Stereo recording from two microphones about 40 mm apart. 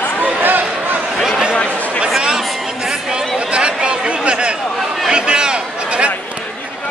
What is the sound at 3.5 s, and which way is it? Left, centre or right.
Chatter, right.